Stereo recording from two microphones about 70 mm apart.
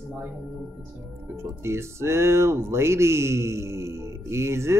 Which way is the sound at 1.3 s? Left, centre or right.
Right.